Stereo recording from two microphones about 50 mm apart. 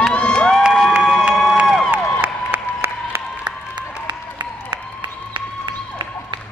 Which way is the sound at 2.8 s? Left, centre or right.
Right.